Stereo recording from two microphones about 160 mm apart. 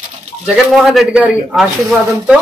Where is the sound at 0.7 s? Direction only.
Centre (ahead or behind).